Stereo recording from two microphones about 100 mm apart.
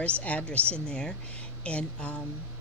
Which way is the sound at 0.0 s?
15° left (ahead or behind).